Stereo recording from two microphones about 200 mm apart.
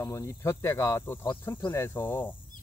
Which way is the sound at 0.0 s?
15° left (ahead or behind).